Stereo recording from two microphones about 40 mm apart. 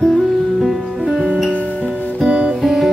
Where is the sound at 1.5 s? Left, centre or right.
Left.